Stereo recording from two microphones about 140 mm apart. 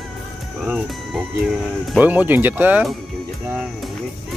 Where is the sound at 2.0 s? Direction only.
15° right (ahead or behind).